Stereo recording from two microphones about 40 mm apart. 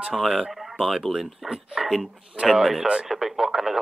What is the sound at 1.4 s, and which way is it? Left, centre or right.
Speech, centre.